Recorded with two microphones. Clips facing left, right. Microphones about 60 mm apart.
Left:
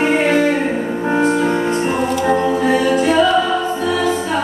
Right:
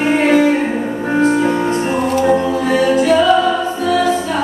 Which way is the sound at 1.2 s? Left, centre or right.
Centre.